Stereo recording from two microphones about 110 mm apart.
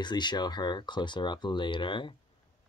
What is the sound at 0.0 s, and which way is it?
Speech, 40° left (ahead or behind).